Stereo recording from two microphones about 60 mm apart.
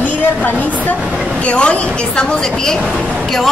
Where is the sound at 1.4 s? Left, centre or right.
Centre.